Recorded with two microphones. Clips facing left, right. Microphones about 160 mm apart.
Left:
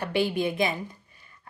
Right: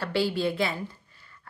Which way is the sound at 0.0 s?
20° left (ahead or behind).